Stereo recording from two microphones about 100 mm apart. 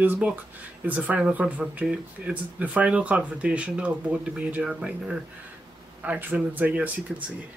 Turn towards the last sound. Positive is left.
turn(degrees=-15)  # may be behind; listen again after turning